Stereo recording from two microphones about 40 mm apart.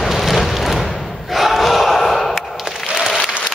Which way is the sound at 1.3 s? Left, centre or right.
Centre.